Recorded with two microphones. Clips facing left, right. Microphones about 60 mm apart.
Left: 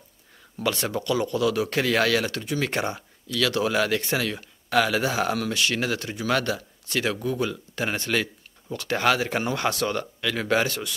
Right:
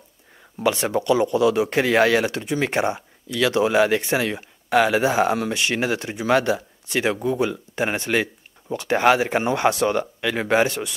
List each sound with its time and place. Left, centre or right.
0.6 s speech: right